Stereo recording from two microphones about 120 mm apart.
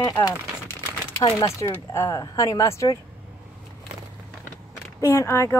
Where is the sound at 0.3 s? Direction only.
20° left (ahead or behind).